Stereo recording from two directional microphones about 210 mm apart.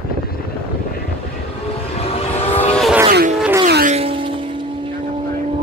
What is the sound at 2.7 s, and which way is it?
Vehicle, centre (ahead or behind).